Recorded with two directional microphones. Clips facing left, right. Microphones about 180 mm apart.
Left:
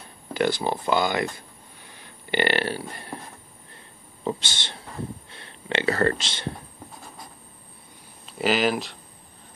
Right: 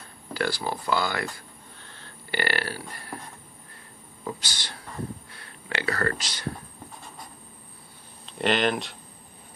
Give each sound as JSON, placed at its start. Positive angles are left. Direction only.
{"t": 0.3, "sound": "speech", "side_deg": 20}
{"t": 4.2, "sound": "speech", "side_deg": 25}
{"t": 8.3, "sound": "speech", "side_deg": 5}